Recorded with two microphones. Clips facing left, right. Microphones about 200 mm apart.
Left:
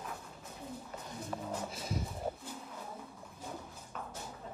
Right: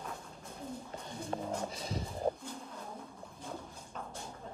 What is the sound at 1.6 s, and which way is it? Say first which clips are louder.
Speech: even; 5° left (ahead or behind).